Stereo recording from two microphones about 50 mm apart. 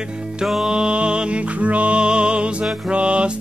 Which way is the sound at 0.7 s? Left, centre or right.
Right.